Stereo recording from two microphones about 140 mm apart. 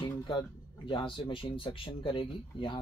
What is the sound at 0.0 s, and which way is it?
Speech, 35° left (ahead or behind).